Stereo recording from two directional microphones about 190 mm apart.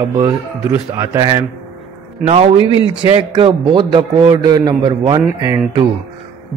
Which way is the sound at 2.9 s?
25° right (ahead or behind).